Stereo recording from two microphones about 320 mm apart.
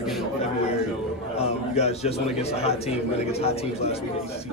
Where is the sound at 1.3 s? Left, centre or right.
Centre.